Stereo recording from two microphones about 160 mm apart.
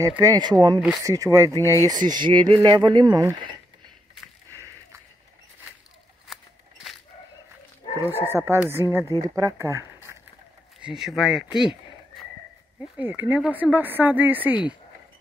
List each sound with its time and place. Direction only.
0.0 s speech: 20° right (ahead or behind)
1.6 s speech: 20° left (ahead or behind)
1.9 s speech: 25° right (ahead or behind)
6.2 s scissors: centre (ahead or behind)
8.0 s speech: 15° right (ahead or behind)
10.8 s speech: 5° right (ahead or behind)
12.9 s speech: 10° right (ahead or behind)